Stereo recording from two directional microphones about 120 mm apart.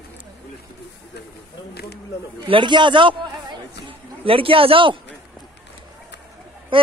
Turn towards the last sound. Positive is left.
turn(degrees=-45)  # may be behind; listen again after turning